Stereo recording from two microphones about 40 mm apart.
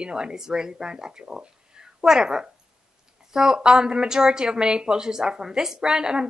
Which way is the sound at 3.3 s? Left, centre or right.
Centre.